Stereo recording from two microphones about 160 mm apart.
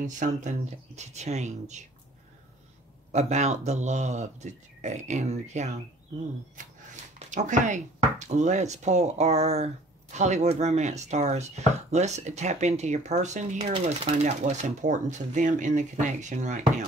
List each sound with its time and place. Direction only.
0.0 s speech: 50° right (ahead or behind)
3.1 s speech: 45° right (ahead or behind)